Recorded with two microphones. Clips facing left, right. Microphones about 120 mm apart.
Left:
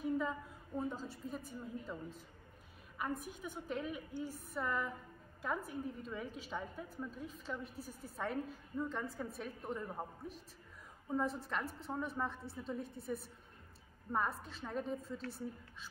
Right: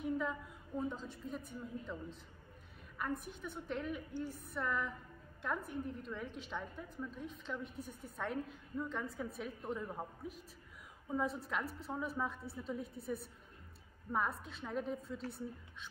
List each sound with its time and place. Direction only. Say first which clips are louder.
0.0 s a woman's voice: left 1 dB; centre (ahead or behind)
3.3 s a woman's voice: even; 5° left (ahead or behind)
7.7 s a woman's voice: right 1 dB; 35° left (ahead or behind)
8.2 s a woman's voice: left 1 dB; centre (ahead or behind)